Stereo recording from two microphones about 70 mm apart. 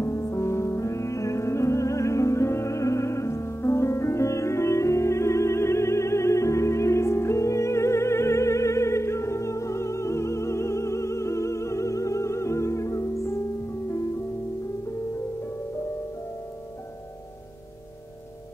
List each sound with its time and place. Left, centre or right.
0.0 s music: left